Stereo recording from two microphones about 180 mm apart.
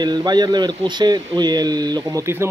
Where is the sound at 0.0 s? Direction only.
25° right (ahead or behind).